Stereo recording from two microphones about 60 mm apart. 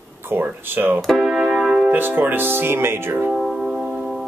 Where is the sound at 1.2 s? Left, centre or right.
Centre.